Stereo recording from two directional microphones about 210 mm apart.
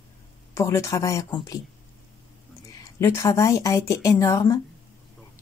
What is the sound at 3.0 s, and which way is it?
A woman's voice, 15° left (ahead or behind).